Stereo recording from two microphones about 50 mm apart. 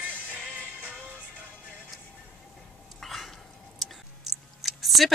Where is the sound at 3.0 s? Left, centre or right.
Centre.